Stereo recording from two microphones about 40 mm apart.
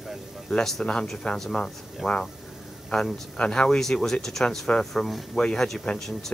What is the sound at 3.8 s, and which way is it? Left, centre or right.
Speech, centre.